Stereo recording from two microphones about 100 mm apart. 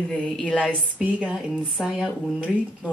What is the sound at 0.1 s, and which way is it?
Speech, 10° left (ahead or behind).